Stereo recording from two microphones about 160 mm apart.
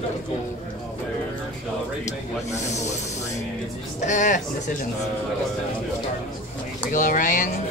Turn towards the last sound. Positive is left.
turn(degrees=55)  # may be behind; listen again after turning